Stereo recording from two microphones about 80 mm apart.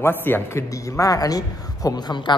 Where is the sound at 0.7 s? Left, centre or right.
Left.